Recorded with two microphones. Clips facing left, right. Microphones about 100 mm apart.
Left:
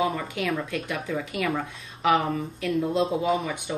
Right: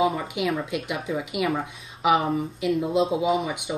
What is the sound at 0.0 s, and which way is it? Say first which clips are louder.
Speech: right 3 dB; 15° right (ahead or behind).